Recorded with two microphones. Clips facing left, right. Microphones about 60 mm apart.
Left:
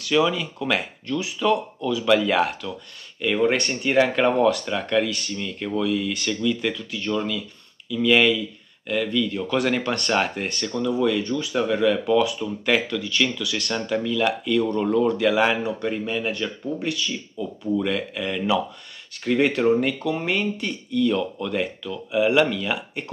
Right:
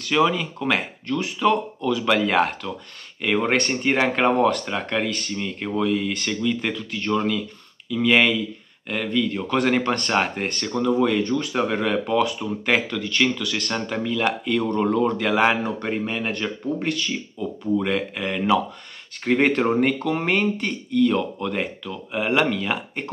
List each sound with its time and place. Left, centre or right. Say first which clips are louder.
0.0 s speech: right 1 dB; right